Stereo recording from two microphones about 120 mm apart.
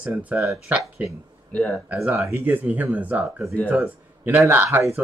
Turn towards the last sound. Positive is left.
turn(degrees=-15)  # may be behind; listen again after turning